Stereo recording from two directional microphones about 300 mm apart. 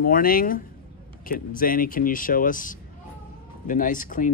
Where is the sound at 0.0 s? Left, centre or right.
Left.